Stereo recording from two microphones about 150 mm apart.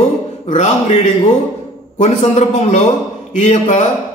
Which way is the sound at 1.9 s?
50° left (ahead or behind).